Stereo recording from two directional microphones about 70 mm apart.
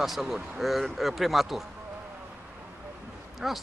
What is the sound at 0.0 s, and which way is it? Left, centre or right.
Speech, centre.